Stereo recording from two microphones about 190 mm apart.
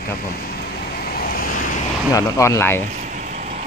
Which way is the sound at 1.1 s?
50° left (ahead or behind).